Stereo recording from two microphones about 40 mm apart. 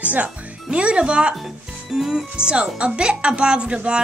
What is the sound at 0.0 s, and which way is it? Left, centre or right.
Speech, right.